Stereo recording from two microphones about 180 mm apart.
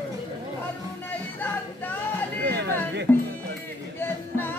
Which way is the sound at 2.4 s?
65° right (ahead or behind).